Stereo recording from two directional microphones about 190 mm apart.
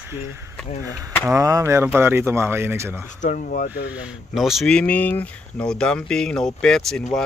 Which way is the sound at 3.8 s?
5° right (ahead or behind).